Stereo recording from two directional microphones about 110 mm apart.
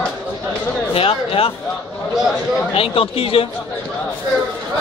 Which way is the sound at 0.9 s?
60° left (ahead or behind).